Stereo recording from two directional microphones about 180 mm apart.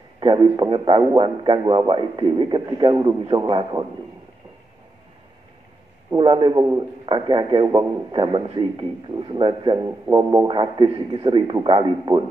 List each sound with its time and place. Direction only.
0.2 s a man's voice: 25° right (ahead or behind)
6.1 s a man's voice: 25° right (ahead or behind)